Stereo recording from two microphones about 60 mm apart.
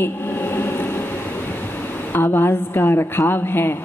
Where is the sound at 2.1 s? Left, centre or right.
Left.